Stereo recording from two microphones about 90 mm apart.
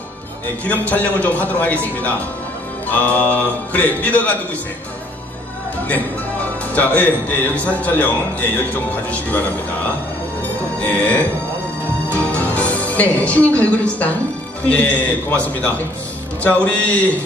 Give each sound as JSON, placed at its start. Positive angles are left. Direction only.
{"t": 0.7, "sound": "a man's voice", "side_deg": 15}
{"t": 6.4, "sound": "a man's voice", "side_deg": 15}
{"t": 10.8, "sound": "a man's voice", "side_deg": 15}
{"t": 12.1, "sound": "music", "side_deg": 15}
{"t": 14.7, "sound": "a man's voice", "side_deg": 15}